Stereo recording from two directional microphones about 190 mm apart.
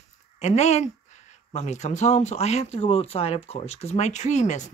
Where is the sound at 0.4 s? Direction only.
35° left (ahead or behind).